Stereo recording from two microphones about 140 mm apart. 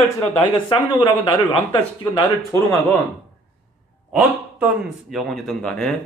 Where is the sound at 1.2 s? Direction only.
35° left (ahead or behind).